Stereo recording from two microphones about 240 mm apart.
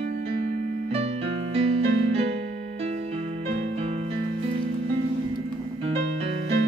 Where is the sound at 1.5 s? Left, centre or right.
Right.